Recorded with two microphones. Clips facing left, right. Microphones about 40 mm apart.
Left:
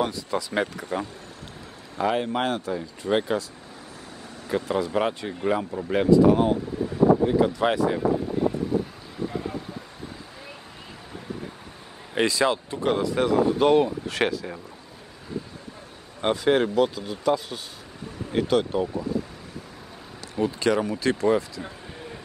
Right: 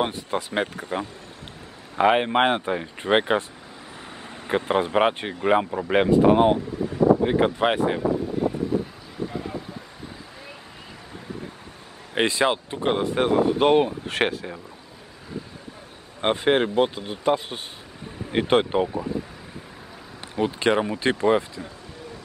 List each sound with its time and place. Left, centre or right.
0.0 s speech: right
4.5 s speech: right
8.0 s a sound: centre
12.2 s speech: right
16.2 s speech: right
20.3 s speech: right